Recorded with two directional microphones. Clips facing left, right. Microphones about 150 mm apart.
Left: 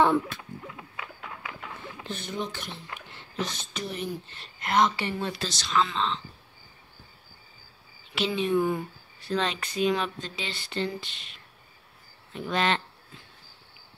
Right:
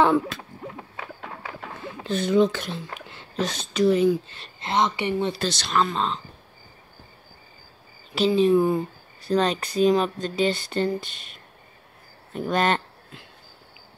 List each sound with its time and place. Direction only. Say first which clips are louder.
0.0 s speech: right 3 dB; 90° right
0.4 s a sound: right 4 dB; 35° right (ahead or behind)
2.0 s speech: right 14 dB; 90° right
4.6 s a woman's voice: right 1 dB; 25° right (ahead or behind)
5.4 s speech: right 3 dB; 60° right (ahead or behind); by 6.2 s 45° right (ahead or behind)
8.1 s speech: right 8 dB; 35° right (ahead or behind)